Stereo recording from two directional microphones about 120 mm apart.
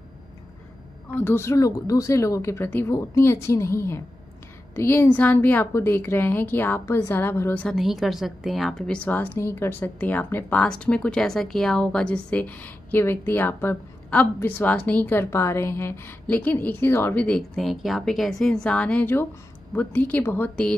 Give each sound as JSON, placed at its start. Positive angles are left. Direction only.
{"t": 1.0, "sound": "a woman's voice", "side_deg": 20}
{"t": 7.6, "sound": "a woman's voice", "side_deg": 0}
{"t": 17.4, "sound": "a woman's voice", "side_deg": 0}